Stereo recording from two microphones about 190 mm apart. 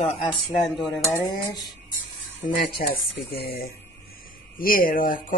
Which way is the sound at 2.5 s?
50° left (ahead or behind).